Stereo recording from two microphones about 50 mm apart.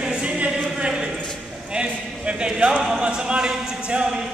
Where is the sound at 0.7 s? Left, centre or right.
Centre.